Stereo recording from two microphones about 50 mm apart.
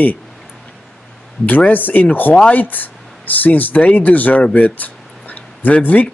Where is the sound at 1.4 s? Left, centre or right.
Left.